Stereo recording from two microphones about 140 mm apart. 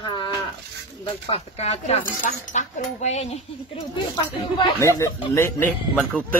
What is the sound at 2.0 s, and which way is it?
Speech, 65° left (ahead or behind).